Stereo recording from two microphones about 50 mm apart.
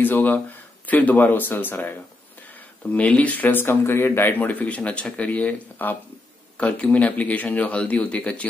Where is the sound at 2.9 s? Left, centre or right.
Left.